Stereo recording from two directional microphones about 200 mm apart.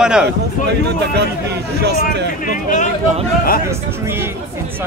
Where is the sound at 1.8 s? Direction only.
55° right (ahead or behind).